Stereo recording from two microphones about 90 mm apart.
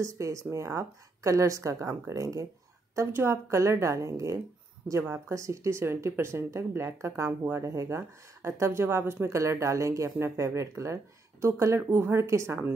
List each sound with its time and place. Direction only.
0.0 s speech: 35° right (ahead or behind)